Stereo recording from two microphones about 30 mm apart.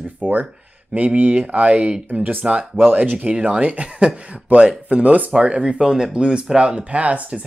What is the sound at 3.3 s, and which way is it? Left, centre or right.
Speech, right.